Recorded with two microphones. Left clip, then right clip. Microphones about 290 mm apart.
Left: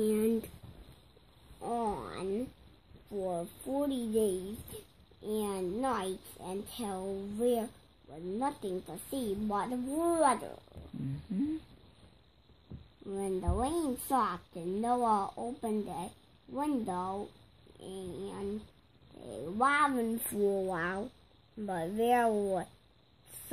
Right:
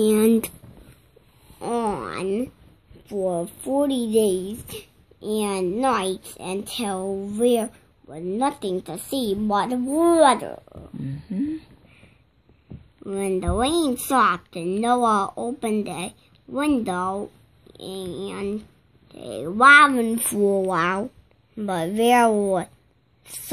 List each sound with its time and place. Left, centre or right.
0.0 s a sound: right
1.6 s a sound: right
3.1 s a woman's voice: right
11.3 s speech: centre
13.0 s a woman's voice: right
17.7 s a woman's voice: right
20.7 s a woman's voice: right